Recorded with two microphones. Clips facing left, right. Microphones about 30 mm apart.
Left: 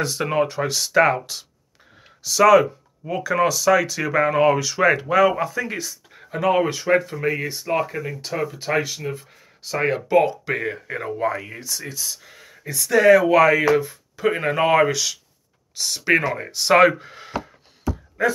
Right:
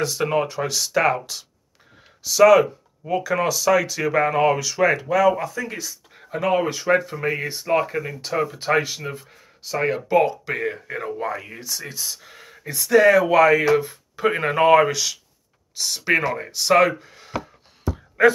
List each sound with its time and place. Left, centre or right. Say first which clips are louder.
0.0 s speech: even; centre
9.6 s speech: left 1 dB; centre
17.0 s speech: left 6 dB; left